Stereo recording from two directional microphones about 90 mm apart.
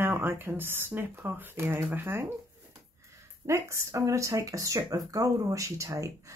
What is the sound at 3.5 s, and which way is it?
Speech, 35° right (ahead or behind).